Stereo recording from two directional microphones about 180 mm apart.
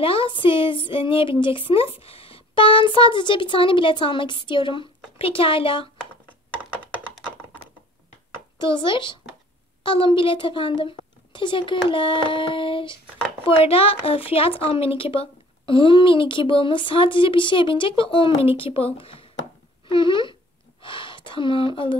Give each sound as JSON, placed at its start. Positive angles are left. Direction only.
{"t": 0.0, "sound": "a woman's voice", "side_deg": 30}
{"t": 6.6, "sound": "computer keyboard", "side_deg": -10}
{"t": 8.5, "sound": "a woman's voice", "side_deg": 25}
{"t": 20.8, "sound": "gasp", "side_deg": 30}